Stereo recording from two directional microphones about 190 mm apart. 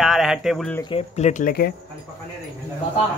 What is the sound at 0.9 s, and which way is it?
Speech, 35° left (ahead or behind).